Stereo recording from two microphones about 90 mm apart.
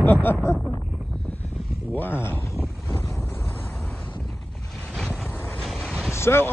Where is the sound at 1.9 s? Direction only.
25° left (ahead or behind).